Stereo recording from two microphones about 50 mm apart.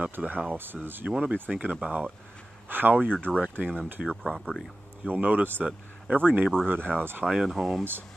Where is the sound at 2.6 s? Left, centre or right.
Right.